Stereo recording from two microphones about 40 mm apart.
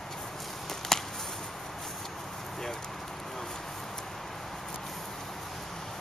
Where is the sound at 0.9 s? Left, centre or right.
Centre.